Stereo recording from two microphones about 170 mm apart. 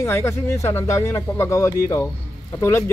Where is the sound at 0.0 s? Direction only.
15° left (ahead or behind).